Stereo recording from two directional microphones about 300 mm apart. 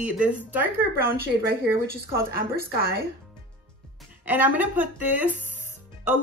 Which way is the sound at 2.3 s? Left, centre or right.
Right.